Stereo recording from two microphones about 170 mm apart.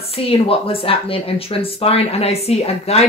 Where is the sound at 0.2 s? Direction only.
35° left (ahead or behind).